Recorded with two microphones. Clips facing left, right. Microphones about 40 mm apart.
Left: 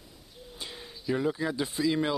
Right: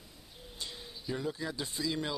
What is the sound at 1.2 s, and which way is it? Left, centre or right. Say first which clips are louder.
Speech: left 7 dB; left.